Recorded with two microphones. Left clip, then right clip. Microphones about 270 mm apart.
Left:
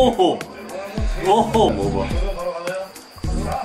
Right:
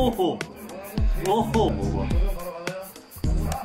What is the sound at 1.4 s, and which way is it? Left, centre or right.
Speech, right.